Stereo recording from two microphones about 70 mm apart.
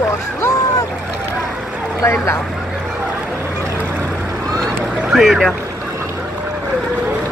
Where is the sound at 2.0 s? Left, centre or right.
Left.